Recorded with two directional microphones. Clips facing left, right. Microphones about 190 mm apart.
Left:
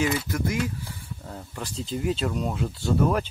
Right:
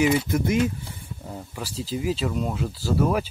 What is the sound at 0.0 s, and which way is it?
Speech, 20° right (ahead or behind).